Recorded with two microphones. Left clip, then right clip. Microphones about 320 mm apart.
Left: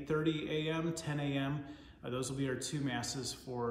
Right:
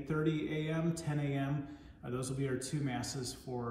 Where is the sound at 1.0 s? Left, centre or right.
Centre.